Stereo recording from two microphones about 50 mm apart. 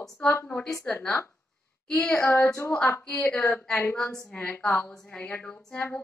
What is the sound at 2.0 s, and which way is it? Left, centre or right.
Speech, left.